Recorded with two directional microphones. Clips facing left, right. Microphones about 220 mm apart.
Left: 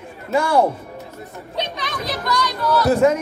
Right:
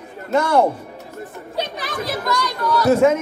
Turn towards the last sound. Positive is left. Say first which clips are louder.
# right 1 dB
turn(degrees=0)  # may be behind; listen again after turning